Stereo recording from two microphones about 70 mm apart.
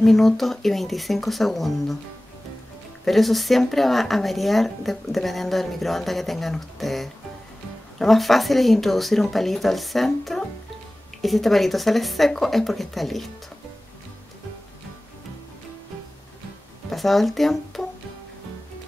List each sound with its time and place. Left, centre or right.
0.0 s speech: centre
3.1 s speech: centre
16.9 s speech: centre